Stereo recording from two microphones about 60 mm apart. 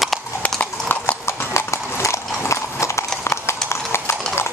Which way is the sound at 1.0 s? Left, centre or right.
Left.